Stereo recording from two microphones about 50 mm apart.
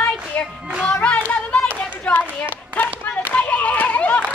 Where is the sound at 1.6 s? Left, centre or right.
Left.